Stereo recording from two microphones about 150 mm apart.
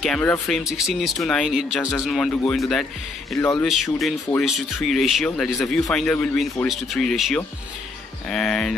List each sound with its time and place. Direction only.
0.0 s speech: 5° left (ahead or behind)
3.3 s speech: 20° left (ahead or behind)
3.6 s speech: centre (ahead or behind)